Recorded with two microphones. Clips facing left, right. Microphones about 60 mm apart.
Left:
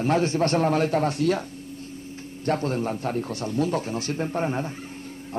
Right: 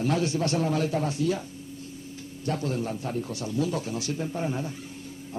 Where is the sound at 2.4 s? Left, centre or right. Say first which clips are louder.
Left 4 dB; left.